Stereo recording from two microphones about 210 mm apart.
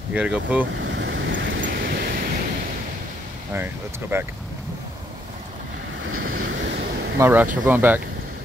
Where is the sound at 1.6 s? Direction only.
45° right (ahead or behind).